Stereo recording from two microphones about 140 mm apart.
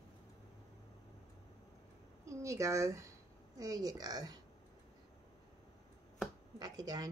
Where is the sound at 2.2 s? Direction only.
20° right (ahead or behind).